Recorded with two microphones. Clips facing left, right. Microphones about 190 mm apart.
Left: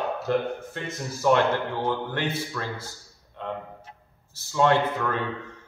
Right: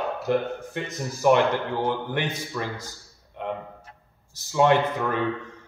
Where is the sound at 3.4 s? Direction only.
15° right (ahead or behind).